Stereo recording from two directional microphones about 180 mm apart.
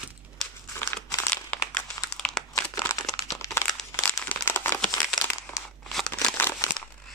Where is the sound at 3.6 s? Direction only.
5° left (ahead or behind).